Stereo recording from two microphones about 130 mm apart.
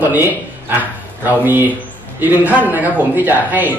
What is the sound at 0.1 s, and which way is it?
Speech, 15° right (ahead or behind).